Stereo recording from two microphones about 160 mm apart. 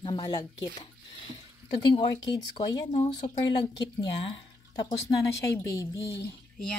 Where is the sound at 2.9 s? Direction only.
40° left (ahead or behind).